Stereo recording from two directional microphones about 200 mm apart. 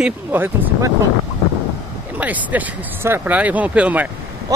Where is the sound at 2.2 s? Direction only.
10° right (ahead or behind).